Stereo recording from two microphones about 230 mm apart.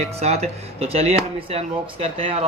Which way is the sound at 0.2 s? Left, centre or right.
Right.